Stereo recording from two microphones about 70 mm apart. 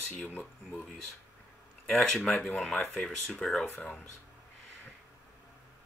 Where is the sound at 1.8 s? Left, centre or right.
Centre.